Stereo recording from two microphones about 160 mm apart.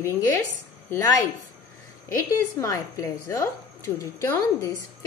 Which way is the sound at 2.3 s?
20° left (ahead or behind).